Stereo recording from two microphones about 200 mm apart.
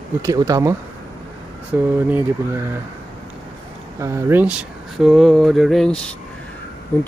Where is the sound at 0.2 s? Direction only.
15° right (ahead or behind).